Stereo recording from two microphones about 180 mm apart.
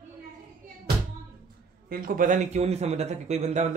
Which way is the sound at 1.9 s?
50° right (ahead or behind).